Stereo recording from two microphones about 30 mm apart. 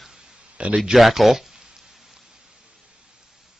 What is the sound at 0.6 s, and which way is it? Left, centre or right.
Speech, right.